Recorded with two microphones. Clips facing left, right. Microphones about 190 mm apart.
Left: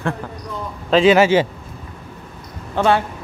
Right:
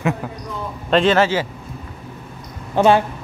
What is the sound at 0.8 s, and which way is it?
Speech, 5° left (ahead or behind).